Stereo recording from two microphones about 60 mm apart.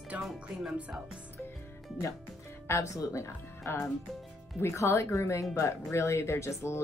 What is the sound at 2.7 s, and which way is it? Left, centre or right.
Speech, left.